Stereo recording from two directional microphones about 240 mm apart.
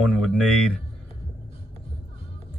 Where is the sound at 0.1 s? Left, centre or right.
Centre.